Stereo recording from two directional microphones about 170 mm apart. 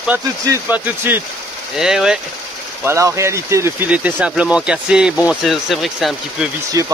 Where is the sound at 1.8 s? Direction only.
5° right (ahead or behind).